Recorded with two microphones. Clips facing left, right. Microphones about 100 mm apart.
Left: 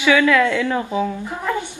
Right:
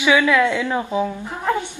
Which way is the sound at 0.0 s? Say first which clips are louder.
Left 1 dB; 15° right (ahead or behind).